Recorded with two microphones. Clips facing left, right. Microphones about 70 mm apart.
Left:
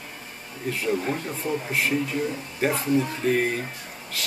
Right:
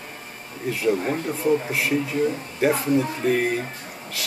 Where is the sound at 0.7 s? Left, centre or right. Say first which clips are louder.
Right 3 dB; centre.